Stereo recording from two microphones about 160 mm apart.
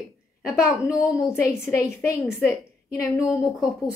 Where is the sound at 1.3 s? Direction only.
15° left (ahead or behind).